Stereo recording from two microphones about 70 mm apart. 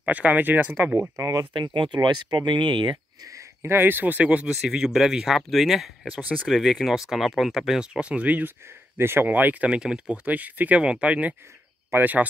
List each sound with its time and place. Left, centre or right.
0.0 s speech: right
1.1 s speech: right
1.6 s speech: right
3.3 s a sound: right
3.7 s speech: right
4.6 s speech: centre
8.9 s speech: right